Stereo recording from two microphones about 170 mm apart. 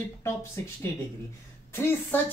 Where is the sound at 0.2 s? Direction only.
15° left (ahead or behind).